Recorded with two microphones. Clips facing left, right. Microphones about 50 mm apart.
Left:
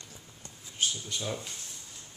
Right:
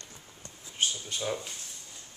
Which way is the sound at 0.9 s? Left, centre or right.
Centre.